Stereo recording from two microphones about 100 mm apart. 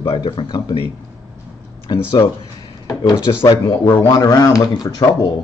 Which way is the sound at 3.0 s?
45° left (ahead or behind).